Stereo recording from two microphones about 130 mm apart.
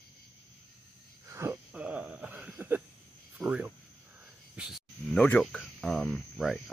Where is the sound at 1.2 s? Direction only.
20° right (ahead or behind).